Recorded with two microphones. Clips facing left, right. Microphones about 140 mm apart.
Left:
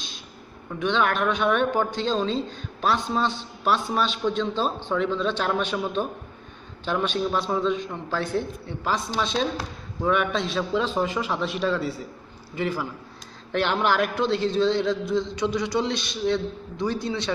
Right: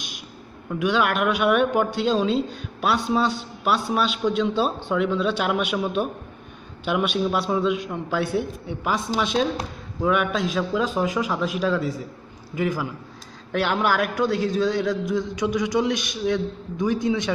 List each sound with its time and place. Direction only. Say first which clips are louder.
0.7 s speech: right 2 dB; 10° right (ahead or behind)
12.5 s speech: right 2 dB; 15° right (ahead or behind)